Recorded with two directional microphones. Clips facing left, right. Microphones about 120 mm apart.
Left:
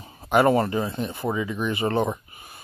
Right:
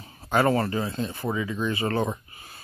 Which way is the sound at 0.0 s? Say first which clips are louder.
Left 3 dB; 20° left (ahead or behind).